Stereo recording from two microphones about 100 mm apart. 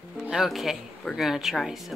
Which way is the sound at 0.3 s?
Centre (ahead or behind).